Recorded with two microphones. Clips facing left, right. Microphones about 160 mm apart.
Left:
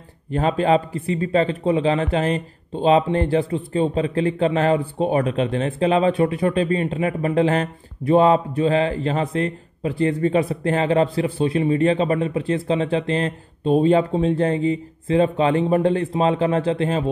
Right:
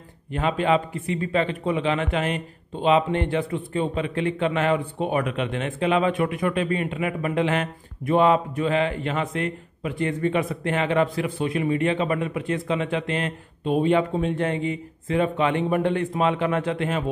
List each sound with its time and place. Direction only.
0.3 s speech: 35° left (ahead or behind)